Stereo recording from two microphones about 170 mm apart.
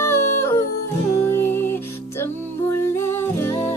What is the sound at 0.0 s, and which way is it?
Music, 15° left (ahead or behind).